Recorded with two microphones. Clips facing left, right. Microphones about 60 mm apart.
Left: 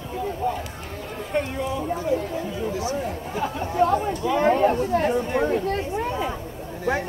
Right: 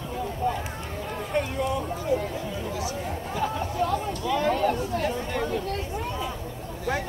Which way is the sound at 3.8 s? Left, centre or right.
Left.